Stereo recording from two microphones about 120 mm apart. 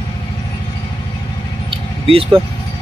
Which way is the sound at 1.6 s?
50° right (ahead or behind).